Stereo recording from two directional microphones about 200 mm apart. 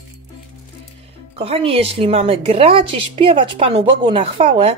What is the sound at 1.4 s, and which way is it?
A woman's voice, 30° right (ahead or behind).